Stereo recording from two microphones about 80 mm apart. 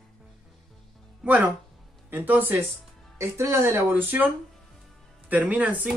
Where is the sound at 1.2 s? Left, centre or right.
Right.